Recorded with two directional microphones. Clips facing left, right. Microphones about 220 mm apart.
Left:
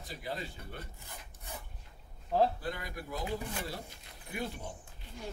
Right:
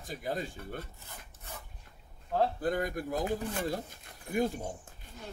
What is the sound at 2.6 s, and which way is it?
Speech, 45° right (ahead or behind).